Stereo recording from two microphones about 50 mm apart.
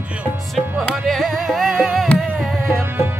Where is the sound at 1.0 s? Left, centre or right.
Centre.